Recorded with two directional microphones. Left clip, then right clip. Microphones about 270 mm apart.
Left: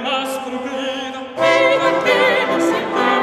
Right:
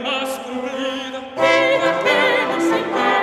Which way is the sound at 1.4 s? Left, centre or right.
Right.